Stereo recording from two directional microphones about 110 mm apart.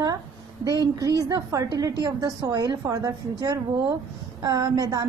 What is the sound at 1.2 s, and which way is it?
Speech, 30° right (ahead or behind).